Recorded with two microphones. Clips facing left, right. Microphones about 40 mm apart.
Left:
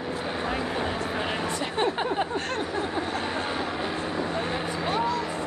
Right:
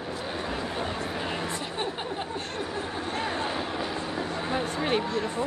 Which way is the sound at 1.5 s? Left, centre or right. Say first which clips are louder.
Left 6 dB; left.